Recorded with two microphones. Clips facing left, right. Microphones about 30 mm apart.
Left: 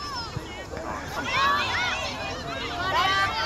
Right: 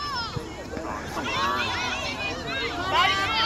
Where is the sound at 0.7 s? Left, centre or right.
Centre.